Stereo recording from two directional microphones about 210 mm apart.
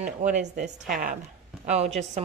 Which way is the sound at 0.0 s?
35° right (ahead or behind).